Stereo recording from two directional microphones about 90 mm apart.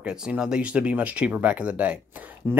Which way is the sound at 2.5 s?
30° right (ahead or behind).